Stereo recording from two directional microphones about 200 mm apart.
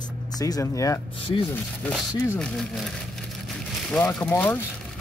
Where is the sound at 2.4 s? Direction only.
Centre (ahead or behind).